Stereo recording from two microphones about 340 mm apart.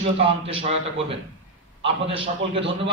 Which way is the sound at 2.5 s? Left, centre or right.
Centre.